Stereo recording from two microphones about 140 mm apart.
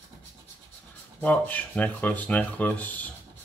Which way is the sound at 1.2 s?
10° left (ahead or behind).